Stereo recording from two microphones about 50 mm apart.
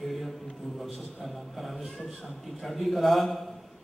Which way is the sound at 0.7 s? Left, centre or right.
Centre.